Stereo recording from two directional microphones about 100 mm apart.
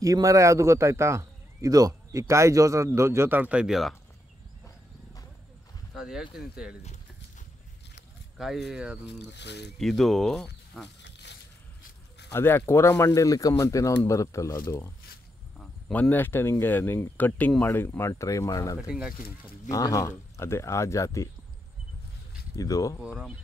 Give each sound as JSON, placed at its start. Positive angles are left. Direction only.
{"t": 0.0, "sound": "speech", "side_deg": -35}
{"t": 5.9, "sound": "speech", "side_deg": -5}
{"t": 8.4, "sound": "speech", "side_deg": -5}
{"t": 9.8, "sound": "speech", "side_deg": 0}
{"t": 12.3, "sound": "speech", "side_deg": 25}
{"t": 15.9, "sound": "speech", "side_deg": 20}
{"t": 22.6, "sound": "speech", "side_deg": 35}
{"t": 23.0, "sound": "speech", "side_deg": -10}